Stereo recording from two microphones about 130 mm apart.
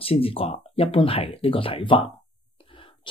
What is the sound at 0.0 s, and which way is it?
Speech, 45° left (ahead or behind).